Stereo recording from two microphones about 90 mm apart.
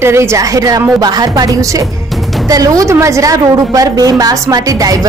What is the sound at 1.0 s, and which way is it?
A woman's voice, 50° right (ahead or behind).